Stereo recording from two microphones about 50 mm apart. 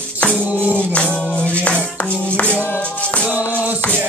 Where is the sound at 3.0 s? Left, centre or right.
Left.